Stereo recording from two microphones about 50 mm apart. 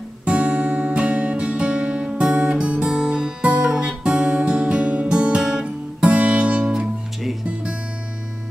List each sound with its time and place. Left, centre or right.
0.2 s music: right